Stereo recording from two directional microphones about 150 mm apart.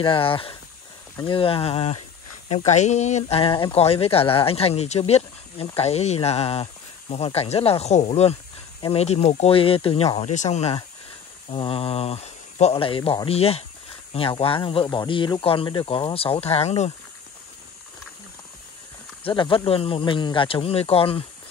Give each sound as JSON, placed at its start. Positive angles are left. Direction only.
{"t": 0.0, "sound": "speech", "side_deg": 35}
{"t": 11.5, "sound": "speech", "side_deg": 35}
{"t": 19.2, "sound": "speech", "side_deg": 35}